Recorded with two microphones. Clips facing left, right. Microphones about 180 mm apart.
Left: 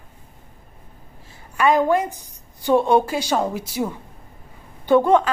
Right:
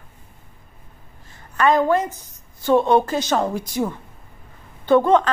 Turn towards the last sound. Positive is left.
turn(degrees=10)  # may be behind; listen again after turning